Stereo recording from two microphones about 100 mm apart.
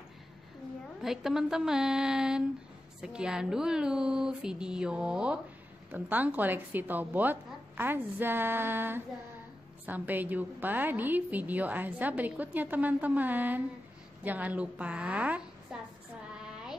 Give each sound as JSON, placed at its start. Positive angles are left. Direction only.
{"t": 1.0, "sound": "a woman's voice", "side_deg": -5}
{"t": 15.7, "sound": "a sound", "side_deg": -10}
{"t": 16.4, "sound": "carnatic music", "side_deg": -5}